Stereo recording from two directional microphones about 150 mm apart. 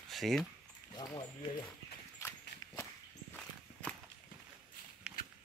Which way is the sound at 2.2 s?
15° left (ahead or behind).